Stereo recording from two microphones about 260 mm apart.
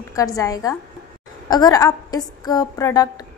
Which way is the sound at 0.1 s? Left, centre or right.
Centre.